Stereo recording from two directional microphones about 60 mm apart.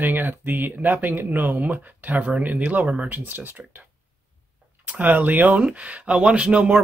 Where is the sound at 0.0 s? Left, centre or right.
Right.